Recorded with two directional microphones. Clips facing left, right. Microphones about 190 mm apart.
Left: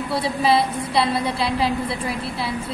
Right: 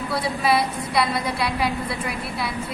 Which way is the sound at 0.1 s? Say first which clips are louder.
Left 2 dB; 30° left (ahead or behind).